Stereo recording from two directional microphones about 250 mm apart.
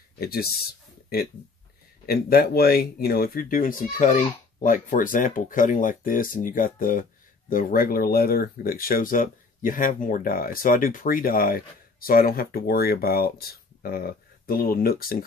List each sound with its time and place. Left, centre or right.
0.2 s speech: left
2.0 s speech: left